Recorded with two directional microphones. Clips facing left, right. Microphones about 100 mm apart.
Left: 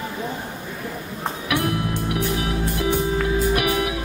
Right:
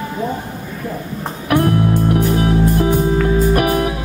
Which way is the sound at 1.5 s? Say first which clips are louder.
Right 9 dB; 45° right (ahead or behind).